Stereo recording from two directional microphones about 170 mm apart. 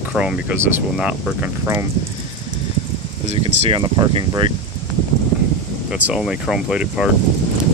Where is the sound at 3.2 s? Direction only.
40° right (ahead or behind).